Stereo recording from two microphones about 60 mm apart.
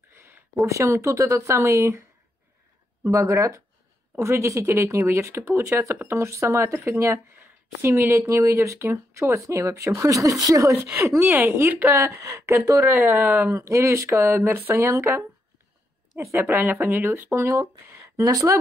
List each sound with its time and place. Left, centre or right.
0.1 s a sound: right
0.7 s speech: right
1.6 s speech: right
7.3 s a sound: right
8.2 s speech: right
10.0 s speech: right
10.9 s speech: right
11.9 s speech: right
16.3 s speech: right
17.3 s speech: right